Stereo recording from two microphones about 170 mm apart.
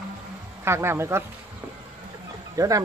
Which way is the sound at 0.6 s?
15° right (ahead or behind).